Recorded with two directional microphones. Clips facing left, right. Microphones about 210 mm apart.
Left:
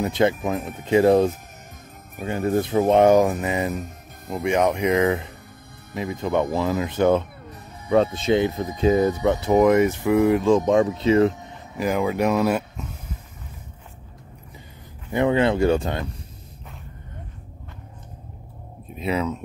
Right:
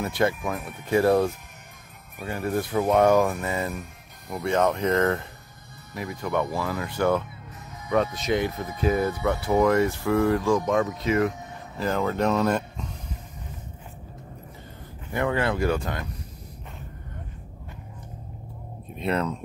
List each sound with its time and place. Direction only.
0.0 s speech: 20° left (ahead or behind)
11.7 s speech: 10° left (ahead or behind)
15.1 s speech: 20° left (ahead or behind)
18.9 s speech: 5° left (ahead or behind)